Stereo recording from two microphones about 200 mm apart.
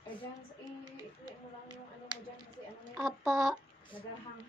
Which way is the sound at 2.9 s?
Centre (ahead or behind).